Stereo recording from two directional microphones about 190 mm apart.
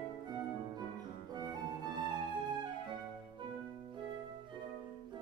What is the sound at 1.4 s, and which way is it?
Music, 20° right (ahead or behind).